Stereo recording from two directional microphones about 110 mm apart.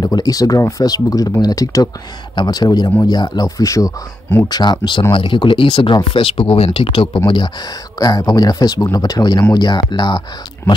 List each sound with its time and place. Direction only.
0.0 s speech: 35° left (ahead or behind)
4.5 s speech: 40° left (ahead or behind)